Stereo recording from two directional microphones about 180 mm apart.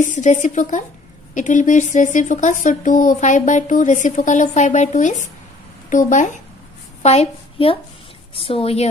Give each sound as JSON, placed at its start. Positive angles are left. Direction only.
{"t": 0.0, "sound": "a woman's voice", "side_deg": 45}